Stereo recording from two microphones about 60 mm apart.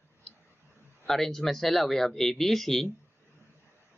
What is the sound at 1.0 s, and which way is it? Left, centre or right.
Speech, centre.